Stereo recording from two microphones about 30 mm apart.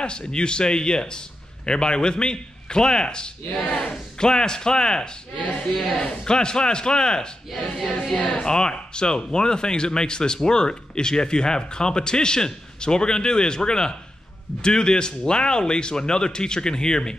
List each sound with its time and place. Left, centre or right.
0.0 s speech: left
3.5 s speech: left
4.2 s speech: left
5.7 s a man's voice: centre
6.2 s speech: left